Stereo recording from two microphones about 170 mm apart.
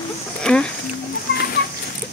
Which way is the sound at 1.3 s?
75° left (ahead or behind).